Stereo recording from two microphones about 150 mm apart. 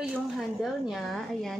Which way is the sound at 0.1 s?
Centre (ahead or behind).